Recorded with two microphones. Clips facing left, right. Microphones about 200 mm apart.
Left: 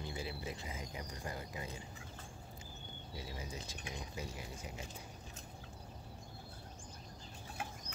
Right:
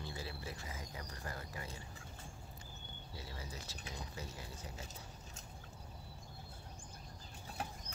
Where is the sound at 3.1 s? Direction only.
20° left (ahead or behind).